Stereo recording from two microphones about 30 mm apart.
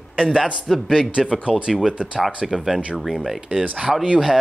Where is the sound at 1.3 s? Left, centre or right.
Right.